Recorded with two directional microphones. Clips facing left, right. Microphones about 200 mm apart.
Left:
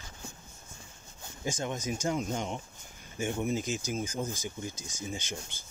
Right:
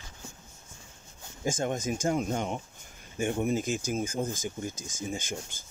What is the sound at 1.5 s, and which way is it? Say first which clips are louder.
Speech: right 4 dB; 50° right (ahead or behind).